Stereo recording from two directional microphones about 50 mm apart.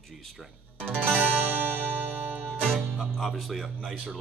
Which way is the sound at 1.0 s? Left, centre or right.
Right.